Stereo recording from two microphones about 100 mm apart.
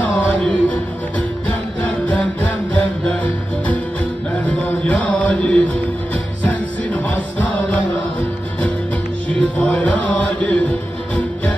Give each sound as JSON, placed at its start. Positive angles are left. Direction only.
{"t": 0.0, "sound": "music", "side_deg": 15}
{"t": 1.8, "sound": "music", "side_deg": 15}
{"t": 4.5, "sound": "music", "side_deg": 15}
{"t": 9.4, "sound": "music", "side_deg": 10}